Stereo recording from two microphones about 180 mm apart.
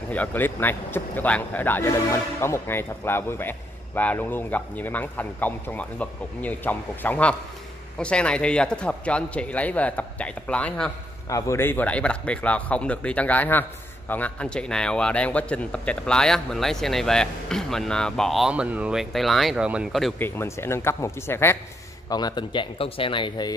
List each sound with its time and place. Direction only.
0.1 s speech: 10° left (ahead or behind)
11.2 s speech: 15° left (ahead or behind); by 20.2 s centre (ahead or behind)
20.2 s speech: 10° left (ahead or behind)
22.1 s speech: 25° left (ahead or behind)